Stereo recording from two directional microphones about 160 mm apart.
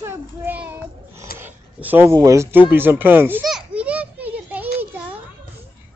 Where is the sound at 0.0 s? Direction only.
15° right (ahead or behind).